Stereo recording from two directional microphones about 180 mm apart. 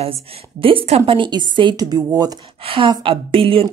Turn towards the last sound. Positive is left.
turn(degrees=-30)  # may be behind; listen again after turning